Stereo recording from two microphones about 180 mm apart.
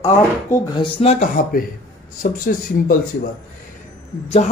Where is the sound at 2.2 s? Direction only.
50° left (ahead or behind).